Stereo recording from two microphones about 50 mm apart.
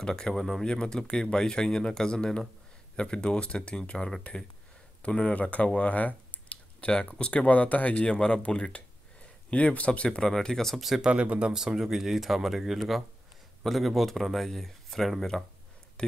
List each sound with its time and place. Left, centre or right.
0.0 s speech: centre
7.4 s speech: left; by 10.8 s centre
10.8 s speech: centre
11.1 s speech: right; by 15.4 s centre
16.0 s speech: left